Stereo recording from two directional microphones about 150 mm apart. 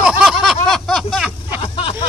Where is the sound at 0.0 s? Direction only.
5° right (ahead or behind).